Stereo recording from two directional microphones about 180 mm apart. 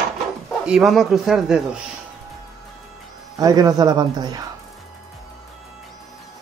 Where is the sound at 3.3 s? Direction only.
20° right (ahead or behind).